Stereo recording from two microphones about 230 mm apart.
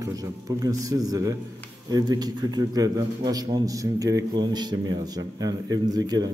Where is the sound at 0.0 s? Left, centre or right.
Centre.